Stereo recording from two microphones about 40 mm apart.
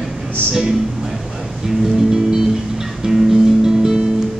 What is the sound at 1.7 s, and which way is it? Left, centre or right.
Music, centre.